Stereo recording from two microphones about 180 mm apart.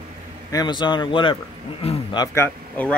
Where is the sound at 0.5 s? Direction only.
20° left (ahead or behind).